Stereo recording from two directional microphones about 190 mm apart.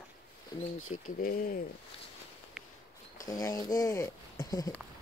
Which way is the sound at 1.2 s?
45° left (ahead or behind).